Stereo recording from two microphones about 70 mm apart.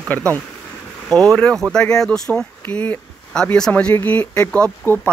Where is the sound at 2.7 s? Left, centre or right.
Left.